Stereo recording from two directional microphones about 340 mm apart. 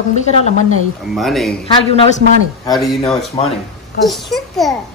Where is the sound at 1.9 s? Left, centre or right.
Centre.